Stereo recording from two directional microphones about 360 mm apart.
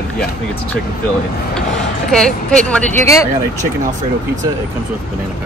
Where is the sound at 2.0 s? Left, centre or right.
Centre.